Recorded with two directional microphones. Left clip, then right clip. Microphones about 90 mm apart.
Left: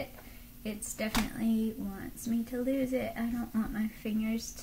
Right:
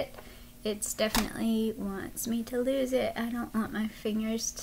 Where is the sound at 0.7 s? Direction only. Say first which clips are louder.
Right 7 dB; 25° right (ahead or behind).